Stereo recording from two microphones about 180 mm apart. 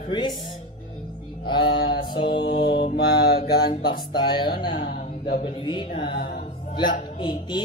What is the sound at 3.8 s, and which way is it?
Speech, 25° left (ahead or behind).